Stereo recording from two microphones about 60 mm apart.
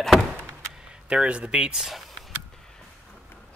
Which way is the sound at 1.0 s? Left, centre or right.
Centre.